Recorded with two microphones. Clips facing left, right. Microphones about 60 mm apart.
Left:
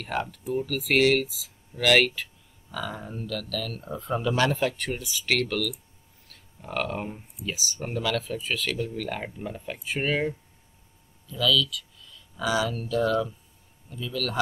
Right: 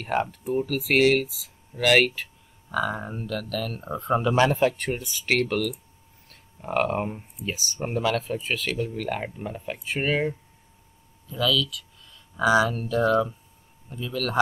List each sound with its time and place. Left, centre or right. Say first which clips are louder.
0.0 s speech: right 4 dB; right
0.7 s speech: right 1 dB; centre
1.2 s speech: right 1 dB; centre
1.8 s speech: right 1 dB; centre
2.7 s speech: right 7 dB; right